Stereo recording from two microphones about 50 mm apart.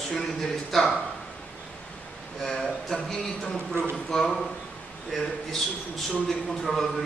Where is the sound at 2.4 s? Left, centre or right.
Centre.